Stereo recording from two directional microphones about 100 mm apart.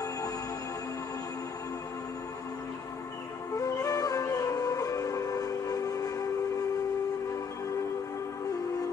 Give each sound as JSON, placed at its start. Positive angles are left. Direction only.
{"t": 3.5, "sound": "music", "side_deg": 35}